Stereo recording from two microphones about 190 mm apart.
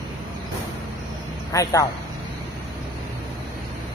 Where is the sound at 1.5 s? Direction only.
15° left (ahead or behind).